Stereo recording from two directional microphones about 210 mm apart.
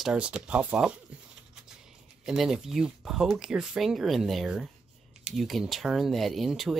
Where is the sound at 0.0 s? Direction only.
5° right (ahead or behind).